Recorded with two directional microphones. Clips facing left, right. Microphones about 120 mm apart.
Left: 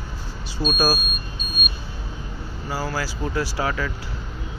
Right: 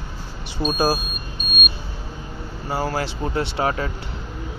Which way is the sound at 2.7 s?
25° right (ahead or behind).